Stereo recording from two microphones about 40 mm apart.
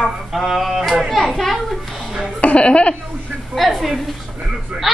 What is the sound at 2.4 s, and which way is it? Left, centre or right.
Speech, left.